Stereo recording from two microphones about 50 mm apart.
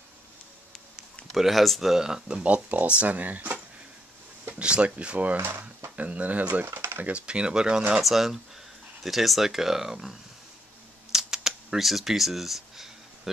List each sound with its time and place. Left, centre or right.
1.3 s speech: centre
2.4 s speech: right
4.6 s speech: right
6.6 s typing: right
7.1 s speech: right
8.0 s speech: centre
11.1 s camera: centre